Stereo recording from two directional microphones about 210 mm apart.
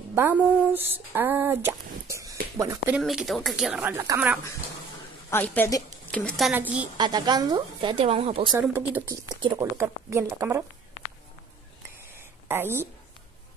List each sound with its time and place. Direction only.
0.1 s speech: 10° right (ahead or behind)
3.0 s speech: centre (ahead or behind)
5.3 s a woman's voice: 10° left (ahead or behind)
6.1 s speech: 5° left (ahead or behind)
7.0 s speech: 20° right (ahead or behind)
8.5 s speech: 10° right (ahead or behind)
12.4 s a woman's voice: 10° right (ahead or behind)